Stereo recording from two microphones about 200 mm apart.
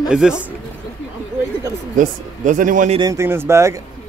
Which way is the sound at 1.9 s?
40° right (ahead or behind).